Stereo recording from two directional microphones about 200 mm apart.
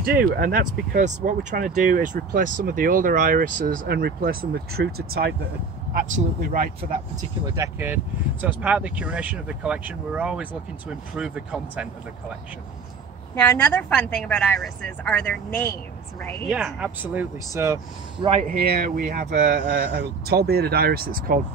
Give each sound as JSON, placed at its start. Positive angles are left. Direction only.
{"t": 0.0, "sound": "speech", "side_deg": -45}
{"t": 7.4, "sound": "speech", "side_deg": -15}
{"t": 13.3, "sound": "a woman's voice", "side_deg": 10}
{"t": 16.4, "sound": "speech", "side_deg": -5}
{"t": 18.5, "sound": "speech", "side_deg": -50}